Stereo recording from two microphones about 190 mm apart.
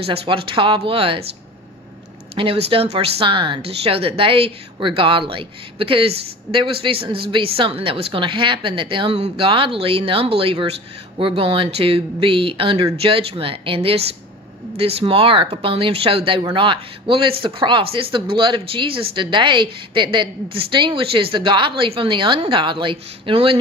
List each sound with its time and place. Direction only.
0.0 s a woman's voice: 30° right (ahead or behind)
2.3 s a woman's voice: 30° right (ahead or behind)